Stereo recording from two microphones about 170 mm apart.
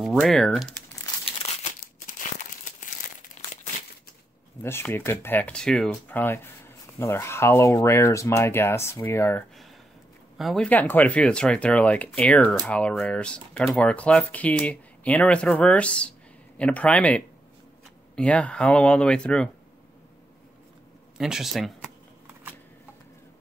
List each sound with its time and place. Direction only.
0.0 s speech: centre (ahead or behind)
1.2 s crumpling: 40° left (ahead or behind)
4.6 s speech: 15° left (ahead or behind)
10.3 s speech: centre (ahead or behind)
21.2 s speech: centre (ahead or behind)